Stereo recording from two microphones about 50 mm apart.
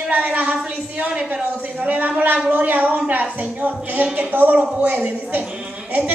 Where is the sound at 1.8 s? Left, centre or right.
Right.